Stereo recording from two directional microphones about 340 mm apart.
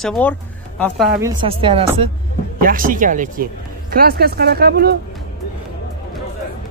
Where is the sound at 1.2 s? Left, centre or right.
Centre.